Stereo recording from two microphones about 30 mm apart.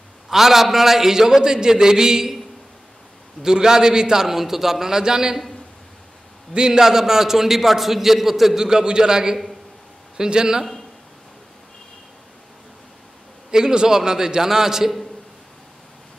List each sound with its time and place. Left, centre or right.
0.3 s a man's voice: centre
3.4 s a man's voice: centre
6.5 s a man's voice: right
6.8 s a man's voice: centre
8.5 s a man's voice: right
13.5 s a man's voice: right